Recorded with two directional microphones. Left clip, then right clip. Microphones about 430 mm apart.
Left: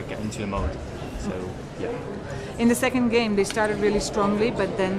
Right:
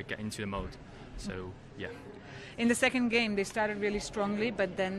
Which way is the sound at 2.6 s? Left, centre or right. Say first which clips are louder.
Left 6 dB; right.